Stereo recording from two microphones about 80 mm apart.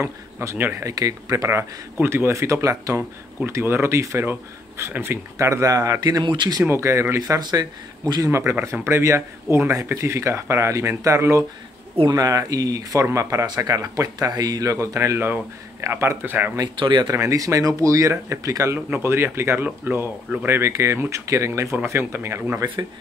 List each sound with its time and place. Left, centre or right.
0.0 s a man's voice: right
0.7 s speech: right
6.2 s speech: right
6.7 s speech: right
7.3 s speech: right
8.3 s speech: right
12.1 s speech: right
16.7 s speech: right
17.1 s speech: right
22.6 s speech: right